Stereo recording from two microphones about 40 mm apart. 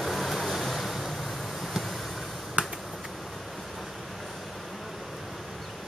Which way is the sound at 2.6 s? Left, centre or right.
Right.